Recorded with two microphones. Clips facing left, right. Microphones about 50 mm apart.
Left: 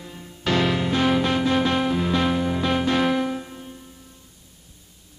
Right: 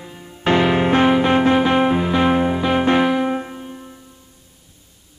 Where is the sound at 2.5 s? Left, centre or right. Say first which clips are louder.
Right 5 dB; centre.